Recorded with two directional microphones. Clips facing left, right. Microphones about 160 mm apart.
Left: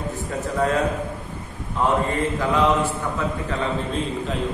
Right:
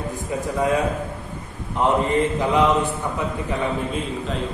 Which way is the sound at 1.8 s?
20° right (ahead or behind).